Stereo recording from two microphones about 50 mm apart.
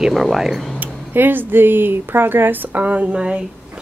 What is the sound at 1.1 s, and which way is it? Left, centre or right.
Speech, right.